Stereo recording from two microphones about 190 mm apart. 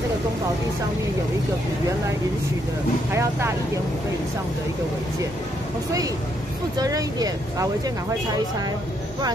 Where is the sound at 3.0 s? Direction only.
15° right (ahead or behind).